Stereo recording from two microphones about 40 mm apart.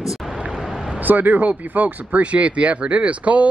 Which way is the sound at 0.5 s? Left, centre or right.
Centre.